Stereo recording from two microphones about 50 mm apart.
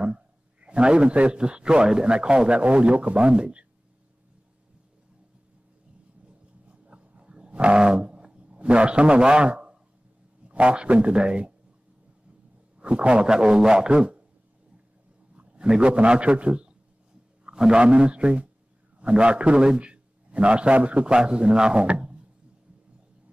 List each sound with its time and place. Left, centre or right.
0.0 s a man's voice: right
6.2 s a sound: right
10.5 s a man's voice: right
12.7 s a man's voice: right
15.3 s a man's voice: right